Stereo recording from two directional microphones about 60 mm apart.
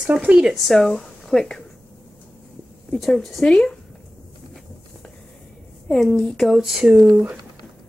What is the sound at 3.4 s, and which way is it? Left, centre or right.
Speech, centre.